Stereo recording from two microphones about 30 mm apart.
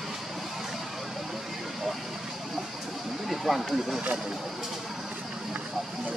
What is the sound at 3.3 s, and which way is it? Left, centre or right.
Speech, centre.